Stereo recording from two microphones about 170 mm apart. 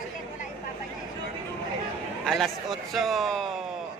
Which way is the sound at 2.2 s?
Centre (ahead or behind).